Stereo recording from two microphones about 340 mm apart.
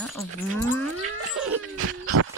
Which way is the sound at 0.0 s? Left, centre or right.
Centre.